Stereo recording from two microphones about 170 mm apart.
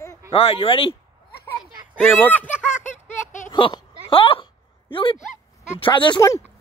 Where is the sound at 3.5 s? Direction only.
30° left (ahead or behind).